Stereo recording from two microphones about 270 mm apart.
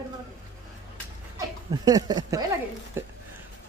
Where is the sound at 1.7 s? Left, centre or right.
Centre.